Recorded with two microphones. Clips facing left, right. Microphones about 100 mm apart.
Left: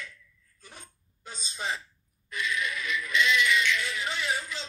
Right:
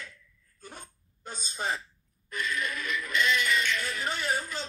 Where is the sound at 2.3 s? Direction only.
45° right (ahead or behind).